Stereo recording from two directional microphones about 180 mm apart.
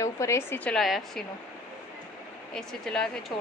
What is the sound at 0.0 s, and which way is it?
Speech, 15° left (ahead or behind).